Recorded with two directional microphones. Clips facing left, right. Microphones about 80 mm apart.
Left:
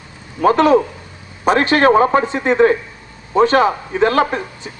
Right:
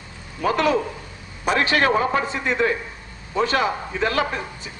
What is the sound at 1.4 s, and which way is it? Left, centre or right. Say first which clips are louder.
A man's voice: left 7 dB; left.